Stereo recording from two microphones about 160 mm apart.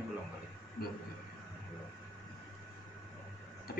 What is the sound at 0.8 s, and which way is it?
Speech, 75° left (ahead or behind).